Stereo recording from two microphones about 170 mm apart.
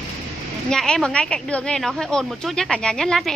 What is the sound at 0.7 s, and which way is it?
Speech, 5° left (ahead or behind).